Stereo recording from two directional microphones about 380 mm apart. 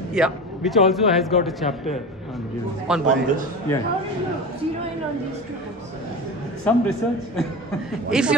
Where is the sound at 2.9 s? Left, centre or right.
Centre.